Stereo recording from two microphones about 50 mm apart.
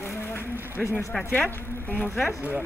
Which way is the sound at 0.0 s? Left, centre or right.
Left.